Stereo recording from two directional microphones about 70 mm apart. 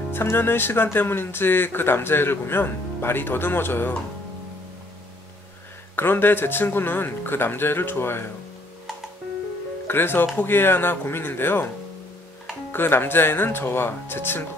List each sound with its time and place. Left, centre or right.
0.1 s speech: left
5.9 s speech: left
9.8 s speech: left
12.7 s speech: left